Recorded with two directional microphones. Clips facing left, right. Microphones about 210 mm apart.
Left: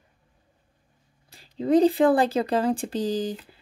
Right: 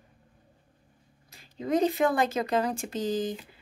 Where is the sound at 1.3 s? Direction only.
35° left (ahead or behind).